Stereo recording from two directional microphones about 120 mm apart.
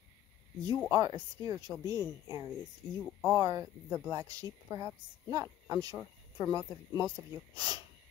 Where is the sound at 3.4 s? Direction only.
25° right (ahead or behind).